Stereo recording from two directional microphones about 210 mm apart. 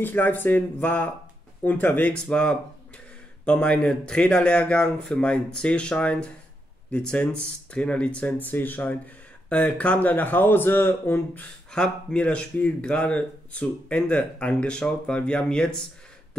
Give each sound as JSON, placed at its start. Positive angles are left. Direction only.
{"t": 0.0, "sound": "a man's voice", "side_deg": 10}